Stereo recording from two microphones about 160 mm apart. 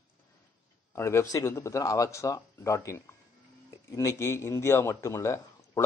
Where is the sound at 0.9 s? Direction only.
15° left (ahead or behind).